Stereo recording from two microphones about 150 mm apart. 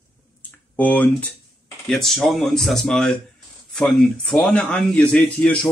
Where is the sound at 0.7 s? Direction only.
10° left (ahead or behind).